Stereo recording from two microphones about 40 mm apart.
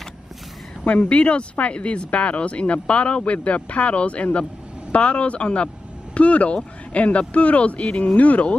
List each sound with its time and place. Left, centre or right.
0.8 s speech: left